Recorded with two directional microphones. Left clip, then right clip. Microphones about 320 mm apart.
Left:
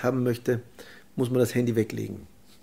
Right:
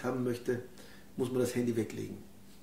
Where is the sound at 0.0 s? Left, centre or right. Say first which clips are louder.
Left 8 dB; left.